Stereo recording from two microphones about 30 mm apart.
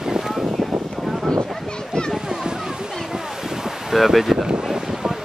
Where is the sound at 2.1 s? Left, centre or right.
Right.